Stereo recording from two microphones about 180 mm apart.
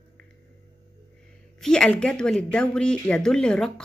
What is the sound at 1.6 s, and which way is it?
Speech, 5° left (ahead or behind).